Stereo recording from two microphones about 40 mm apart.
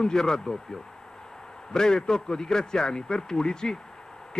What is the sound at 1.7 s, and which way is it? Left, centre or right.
A man's voice, centre.